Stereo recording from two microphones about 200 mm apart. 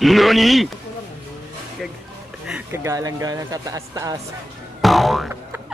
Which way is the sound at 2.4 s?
10° right (ahead or behind).